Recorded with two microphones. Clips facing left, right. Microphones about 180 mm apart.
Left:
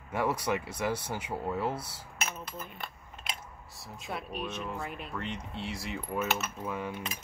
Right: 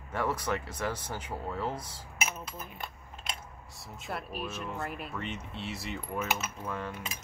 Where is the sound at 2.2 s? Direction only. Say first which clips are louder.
Even; 10° right (ahead or behind).